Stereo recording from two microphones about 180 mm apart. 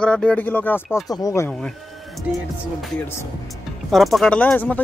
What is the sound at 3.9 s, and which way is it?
Speech, centre (ahead or behind).